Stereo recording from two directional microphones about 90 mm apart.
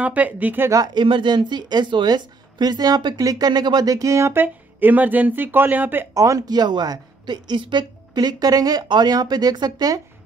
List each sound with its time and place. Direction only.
0.0 s speech: 15° right (ahead or behind)
0.9 s a woman's voice: 65° right (ahead or behind); by 6.0 s 20° right (ahead or behind)
6.1 s a woman's voice: 40° right (ahead or behind)